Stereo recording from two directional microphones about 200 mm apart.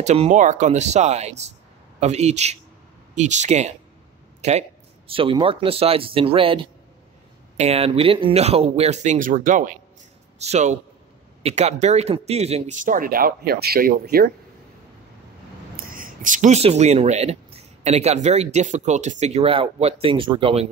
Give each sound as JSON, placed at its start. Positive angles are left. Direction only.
{"t": 0.0, "sound": "a man's voice", "side_deg": -35}
{"t": 15.7, "sound": "speech", "side_deg": -45}